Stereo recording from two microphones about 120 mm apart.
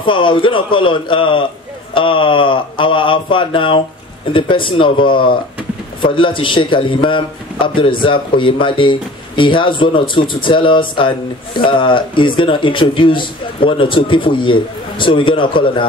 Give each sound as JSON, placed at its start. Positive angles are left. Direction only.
{"t": 0.0, "sound": "a man's voice", "side_deg": 45}